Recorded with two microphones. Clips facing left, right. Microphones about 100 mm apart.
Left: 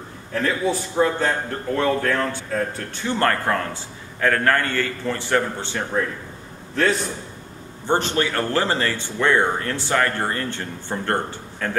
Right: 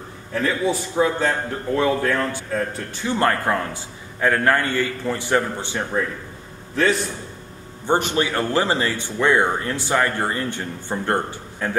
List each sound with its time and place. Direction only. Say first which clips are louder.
0.3 s a man's voice: right 1 dB; centre (ahead or behind)
7.8 s speech: right 1 dB; 15° right (ahead or behind)